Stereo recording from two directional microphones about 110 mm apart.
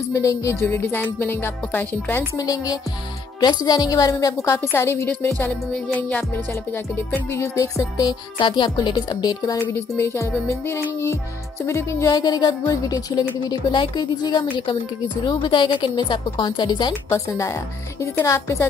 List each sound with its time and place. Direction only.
0.1 s music: 30° left (ahead or behind)
2.3 s music: 35° left (ahead or behind)
9.6 s music: 25° left (ahead or behind)
11.6 s music: 25° left (ahead or behind)
12.2 s music: 40° left (ahead or behind)
15.2 s speech: 45° left (ahead or behind)
17.1 s music: 25° left (ahead or behind)